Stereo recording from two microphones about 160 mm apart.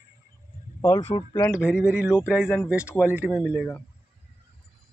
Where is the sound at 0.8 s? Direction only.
25° left (ahead or behind).